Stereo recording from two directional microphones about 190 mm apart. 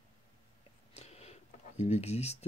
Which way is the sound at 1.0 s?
35° left (ahead or behind).